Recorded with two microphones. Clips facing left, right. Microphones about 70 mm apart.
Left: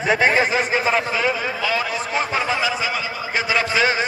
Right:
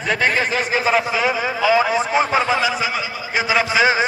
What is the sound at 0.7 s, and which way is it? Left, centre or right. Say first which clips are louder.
A man's voice: right 2 dB; centre.